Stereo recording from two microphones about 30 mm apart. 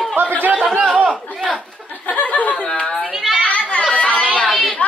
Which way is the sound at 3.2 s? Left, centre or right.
Centre.